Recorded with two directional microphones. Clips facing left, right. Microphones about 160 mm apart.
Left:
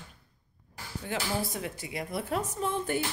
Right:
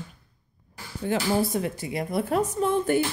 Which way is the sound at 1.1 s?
40° right (ahead or behind).